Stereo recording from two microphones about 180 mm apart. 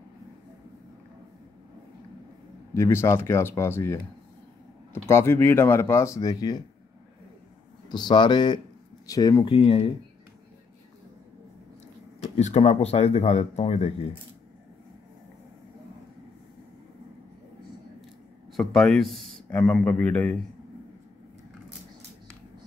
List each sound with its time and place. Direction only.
2.7 s speech: 15° left (ahead or behind)
7.9 s speech: 25° left (ahead or behind)
12.4 s speech: 40° left (ahead or behind)
18.6 s a man's voice: centre (ahead or behind)